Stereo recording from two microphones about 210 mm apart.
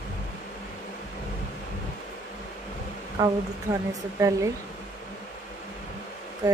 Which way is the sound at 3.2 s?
15° right (ahead or behind).